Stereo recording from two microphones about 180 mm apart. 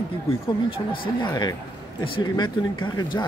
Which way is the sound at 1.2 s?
25° left (ahead or behind).